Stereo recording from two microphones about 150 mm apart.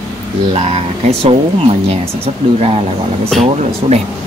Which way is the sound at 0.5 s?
45° right (ahead or behind).